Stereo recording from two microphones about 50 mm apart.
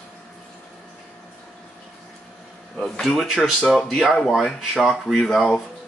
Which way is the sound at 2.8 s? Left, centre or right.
Centre.